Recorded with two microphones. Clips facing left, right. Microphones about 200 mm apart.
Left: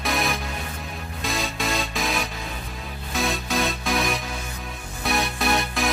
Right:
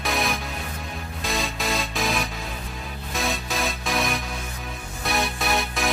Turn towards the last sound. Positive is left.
turn(degrees=0)  # may be behind; listen again after turning